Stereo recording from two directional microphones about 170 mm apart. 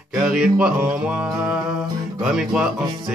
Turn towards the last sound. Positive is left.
turn(degrees=-5)  # may be behind; listen again after turning